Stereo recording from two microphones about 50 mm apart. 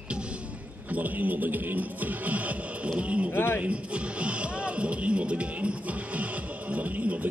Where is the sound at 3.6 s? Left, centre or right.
Right.